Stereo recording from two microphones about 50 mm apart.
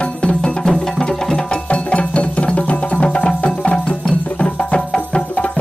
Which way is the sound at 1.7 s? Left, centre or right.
Left.